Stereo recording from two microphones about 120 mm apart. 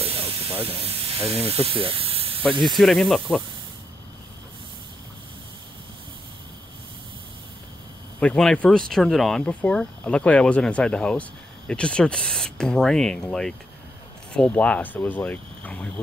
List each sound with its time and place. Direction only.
0.0 s hiss: 50° right (ahead or behind)
0.8 s speech: 55° right (ahead or behind)
2.6 s speech: centre (ahead or behind)
8.2 s speech: 5° left (ahead or behind)